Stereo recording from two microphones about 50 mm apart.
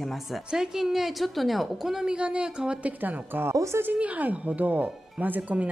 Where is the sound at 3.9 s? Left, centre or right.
Right.